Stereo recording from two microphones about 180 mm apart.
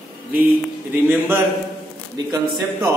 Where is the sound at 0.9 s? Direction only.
10° right (ahead or behind).